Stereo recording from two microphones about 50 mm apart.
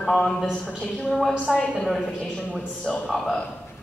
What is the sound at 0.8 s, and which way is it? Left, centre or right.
Speech, left.